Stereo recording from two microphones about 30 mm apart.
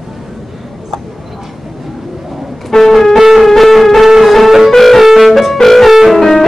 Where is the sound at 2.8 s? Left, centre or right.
Centre.